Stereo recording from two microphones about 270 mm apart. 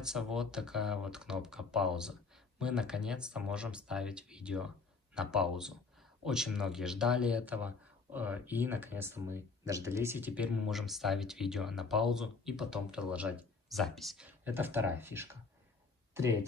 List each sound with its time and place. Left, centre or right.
0.0 s speech: centre